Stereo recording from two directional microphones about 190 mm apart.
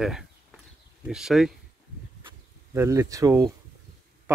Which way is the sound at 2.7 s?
15° right (ahead or behind).